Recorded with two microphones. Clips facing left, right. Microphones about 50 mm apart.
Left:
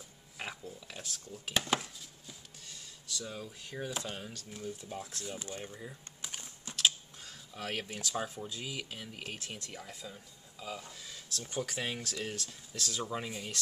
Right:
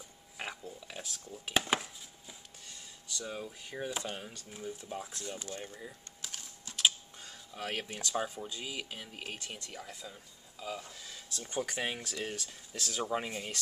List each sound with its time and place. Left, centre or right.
0.4 s a sound: centre
1.8 s chopping: centre
6.2 s typing: centre
6.7 s speech: centre